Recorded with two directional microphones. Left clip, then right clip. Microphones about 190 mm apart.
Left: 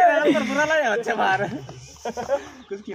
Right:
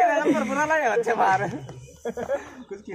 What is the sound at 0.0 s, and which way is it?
Speech, 45° left (ahead or behind).